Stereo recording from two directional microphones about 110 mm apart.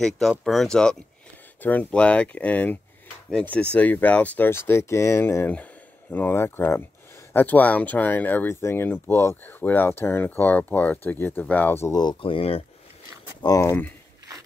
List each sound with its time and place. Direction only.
0.0 s speech: 5° left (ahead or behind); by 11.9 s 20° left (ahead or behind)
11.9 s speech: 40° left (ahead or behind)
12.2 s speech: 60° left (ahead or behind)
13.4 s speech: 30° left (ahead or behind)